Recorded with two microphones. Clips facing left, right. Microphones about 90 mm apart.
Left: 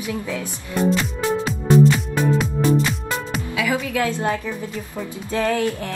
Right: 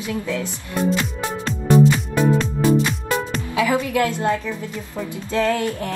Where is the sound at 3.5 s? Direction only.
25° right (ahead or behind).